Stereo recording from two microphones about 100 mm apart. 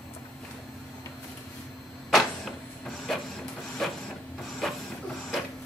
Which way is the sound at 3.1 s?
Centre (ahead or behind).